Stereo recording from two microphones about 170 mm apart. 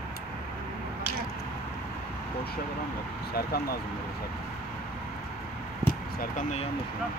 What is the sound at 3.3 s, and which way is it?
Speech, 65° left (ahead or behind).